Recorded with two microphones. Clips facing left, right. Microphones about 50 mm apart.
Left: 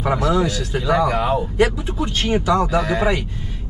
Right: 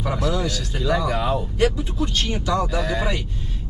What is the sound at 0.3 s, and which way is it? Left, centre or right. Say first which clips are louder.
Speech: left 6 dB; centre.